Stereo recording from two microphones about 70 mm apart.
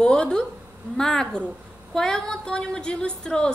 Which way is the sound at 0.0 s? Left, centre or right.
Centre.